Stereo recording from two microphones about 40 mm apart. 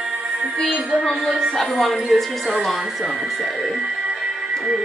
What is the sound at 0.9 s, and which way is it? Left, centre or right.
Speech, centre.